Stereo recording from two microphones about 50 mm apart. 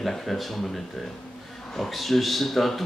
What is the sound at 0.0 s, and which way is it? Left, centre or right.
Speech, centre.